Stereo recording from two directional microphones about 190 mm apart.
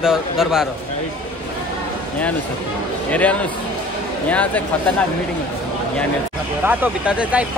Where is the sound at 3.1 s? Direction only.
10° left (ahead or behind).